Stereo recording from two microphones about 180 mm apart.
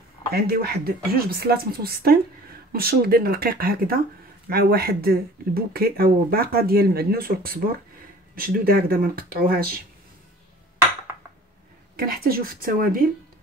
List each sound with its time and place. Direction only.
0.3 s speech: 60° right (ahead or behind)
12.0 s speech: 55° right (ahead or behind)